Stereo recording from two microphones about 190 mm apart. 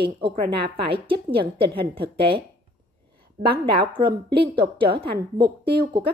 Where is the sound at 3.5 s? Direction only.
25° right (ahead or behind).